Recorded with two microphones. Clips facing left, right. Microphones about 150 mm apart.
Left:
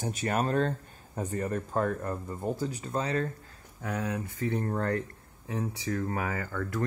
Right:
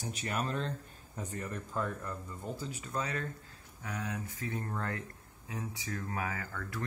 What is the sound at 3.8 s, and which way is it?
Speech, 55° left (ahead or behind).